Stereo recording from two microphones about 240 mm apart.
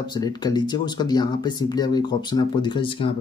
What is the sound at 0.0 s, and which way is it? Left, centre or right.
Speech, centre.